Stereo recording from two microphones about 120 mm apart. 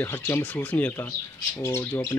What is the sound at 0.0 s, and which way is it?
Speech, 20° left (ahead or behind).